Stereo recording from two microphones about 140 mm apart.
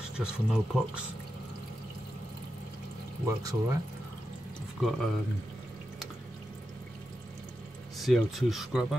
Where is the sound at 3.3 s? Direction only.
25° right (ahead or behind).